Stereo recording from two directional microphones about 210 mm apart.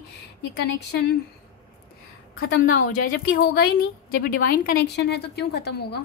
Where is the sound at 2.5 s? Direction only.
40° left (ahead or behind).